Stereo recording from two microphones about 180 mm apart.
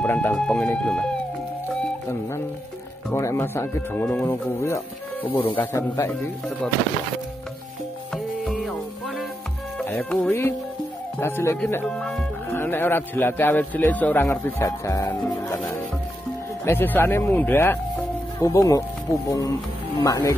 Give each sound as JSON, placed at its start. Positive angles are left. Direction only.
{"t": 0.0, "sound": "speech", "side_deg": 10}
{"t": 3.1, "sound": "speech", "side_deg": 15}
{"t": 8.1, "sound": "music", "side_deg": 0}
{"t": 9.8, "sound": "music", "side_deg": 5}
{"t": 11.1, "sound": "speech", "side_deg": 15}